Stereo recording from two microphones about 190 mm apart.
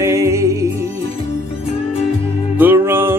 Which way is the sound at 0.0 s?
15° right (ahead or behind).